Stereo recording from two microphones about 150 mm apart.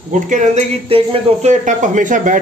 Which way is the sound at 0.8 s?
45° right (ahead or behind).